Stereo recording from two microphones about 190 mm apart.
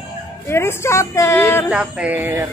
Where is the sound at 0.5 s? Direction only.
15° left (ahead or behind).